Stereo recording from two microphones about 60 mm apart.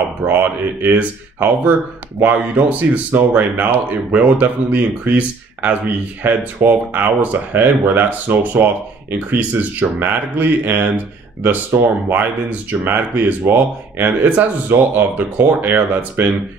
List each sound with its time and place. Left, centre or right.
0.2 s speech: right